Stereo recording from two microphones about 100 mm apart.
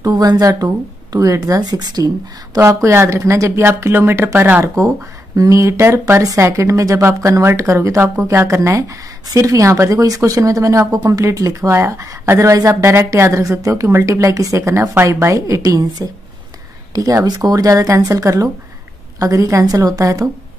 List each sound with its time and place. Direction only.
0.0 s speech: 35° right (ahead or behind)
2.6 s speech: 30° right (ahead or behind)
4.7 s speech: 35° right (ahead or behind)